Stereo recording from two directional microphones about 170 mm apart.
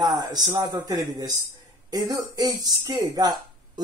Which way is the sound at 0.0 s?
25° right (ahead or behind).